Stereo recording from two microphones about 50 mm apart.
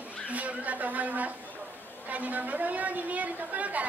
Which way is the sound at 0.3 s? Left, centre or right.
Right.